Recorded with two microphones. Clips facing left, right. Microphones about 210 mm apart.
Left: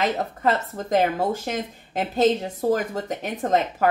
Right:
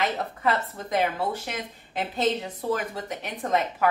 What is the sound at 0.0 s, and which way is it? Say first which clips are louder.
Speech: left 3 dB; 45° left (ahead or behind).